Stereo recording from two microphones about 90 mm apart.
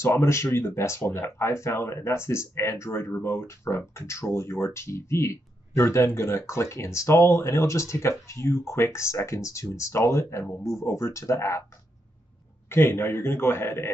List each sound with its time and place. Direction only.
0.0 s speech: 30° left (ahead or behind)
10.6 s speech: 5° right (ahead or behind)
10.9 s speech: 30° left (ahead or behind)
12.6 s a man's voice: 25° left (ahead or behind)